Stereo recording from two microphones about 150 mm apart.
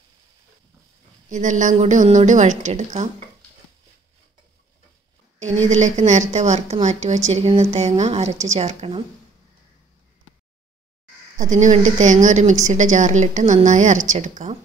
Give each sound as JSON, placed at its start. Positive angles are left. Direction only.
{"t": 1.3, "sound": "a woman's voice", "side_deg": -55}
{"t": 5.4, "sound": "a woman's voice", "side_deg": -50}
{"t": 11.3, "sound": "a woman's voice", "side_deg": -55}